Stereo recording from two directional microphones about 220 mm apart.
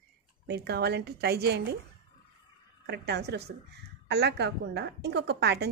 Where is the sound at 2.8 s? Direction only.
50° right (ahead or behind).